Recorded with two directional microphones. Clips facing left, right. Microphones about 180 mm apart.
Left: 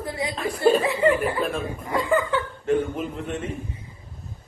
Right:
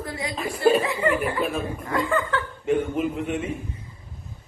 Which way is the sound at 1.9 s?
20° left (ahead or behind).